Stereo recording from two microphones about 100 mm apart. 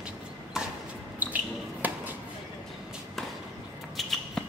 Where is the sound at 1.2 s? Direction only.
15° right (ahead or behind).